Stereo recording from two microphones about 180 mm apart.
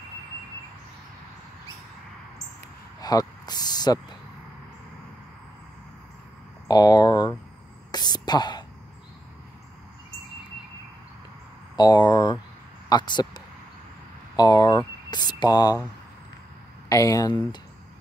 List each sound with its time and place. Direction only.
3.0 s speech: 20° left (ahead or behind)
6.7 s speech: 20° left (ahead or behind)
7.9 s a sound: 20° left (ahead or behind)
11.7 s speech: 25° left (ahead or behind)
14.3 s a sound: 20° left (ahead or behind)
16.9 s speech: 20° left (ahead or behind)